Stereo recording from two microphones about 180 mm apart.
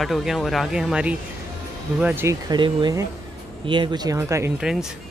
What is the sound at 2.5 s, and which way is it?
Speech, 25° right (ahead or behind).